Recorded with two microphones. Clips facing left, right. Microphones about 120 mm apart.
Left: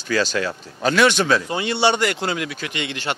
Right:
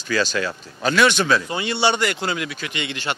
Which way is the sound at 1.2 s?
45° left (ahead or behind).